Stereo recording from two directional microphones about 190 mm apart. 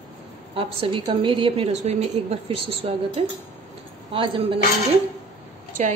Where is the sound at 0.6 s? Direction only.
30° right (ahead or behind).